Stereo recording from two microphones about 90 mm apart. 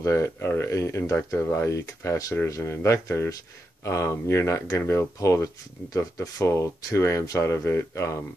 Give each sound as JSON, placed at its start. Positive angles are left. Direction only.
{"t": 0.0, "sound": "speech", "side_deg": 30}